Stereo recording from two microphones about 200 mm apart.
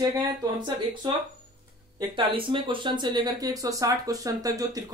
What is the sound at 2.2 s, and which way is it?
Speech, 25° right (ahead or behind).